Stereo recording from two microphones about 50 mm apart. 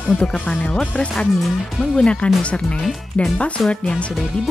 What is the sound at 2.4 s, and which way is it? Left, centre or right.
Speech, left.